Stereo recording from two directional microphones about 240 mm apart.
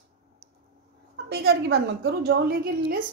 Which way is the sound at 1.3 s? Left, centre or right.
Right.